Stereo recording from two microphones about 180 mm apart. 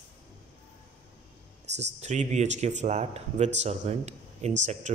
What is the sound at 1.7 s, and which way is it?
Speech, 40° right (ahead or behind).